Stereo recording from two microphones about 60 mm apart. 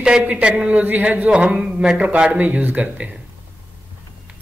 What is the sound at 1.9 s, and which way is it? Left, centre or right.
A man's voice, right.